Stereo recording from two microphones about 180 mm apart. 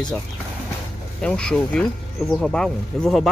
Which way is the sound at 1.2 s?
5° left (ahead or behind).